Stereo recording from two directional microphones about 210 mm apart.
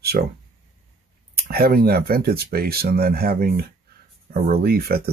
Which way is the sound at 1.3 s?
45° right (ahead or behind).